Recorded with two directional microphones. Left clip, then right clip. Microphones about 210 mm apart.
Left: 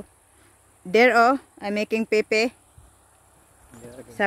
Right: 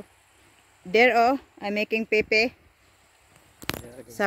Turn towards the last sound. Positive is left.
turn(degrees=-15)  # may be behind; listen again after turning